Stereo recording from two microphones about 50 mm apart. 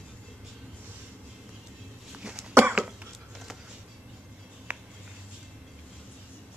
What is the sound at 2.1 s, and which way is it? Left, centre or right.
Cough, centre.